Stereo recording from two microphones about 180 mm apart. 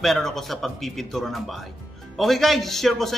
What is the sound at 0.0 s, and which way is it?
A man's voice, centre (ahead or behind).